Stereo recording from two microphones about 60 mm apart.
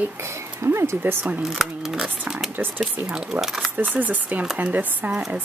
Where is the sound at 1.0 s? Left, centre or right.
Right.